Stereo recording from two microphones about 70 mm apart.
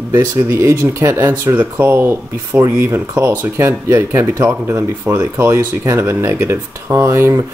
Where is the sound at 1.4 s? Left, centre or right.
Right.